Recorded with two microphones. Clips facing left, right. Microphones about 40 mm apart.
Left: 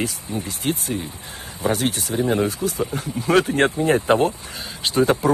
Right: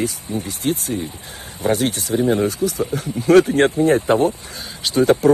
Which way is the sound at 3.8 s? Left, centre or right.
Left.